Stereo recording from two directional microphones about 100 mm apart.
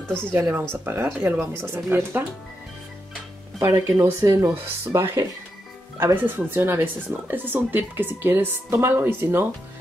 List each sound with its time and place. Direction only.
0.0 s speech: 10° left (ahead or behind)
0.3 s a woman's voice: 20° right (ahead or behind)
3.5 s a woman's voice: 35° right (ahead or behind)